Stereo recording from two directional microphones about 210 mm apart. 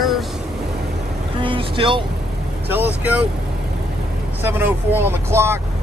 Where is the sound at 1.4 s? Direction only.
25° right (ahead or behind).